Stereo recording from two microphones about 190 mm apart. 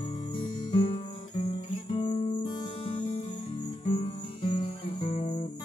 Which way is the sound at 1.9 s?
35° left (ahead or behind).